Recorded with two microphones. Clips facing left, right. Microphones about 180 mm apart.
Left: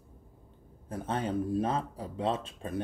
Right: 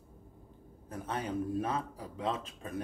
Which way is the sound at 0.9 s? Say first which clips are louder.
Left 4 dB; 30° left (ahead or behind).